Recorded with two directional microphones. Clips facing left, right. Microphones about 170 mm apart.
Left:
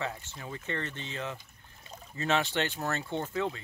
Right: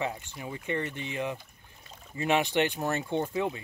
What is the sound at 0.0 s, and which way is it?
Speech, 15° right (ahead or behind).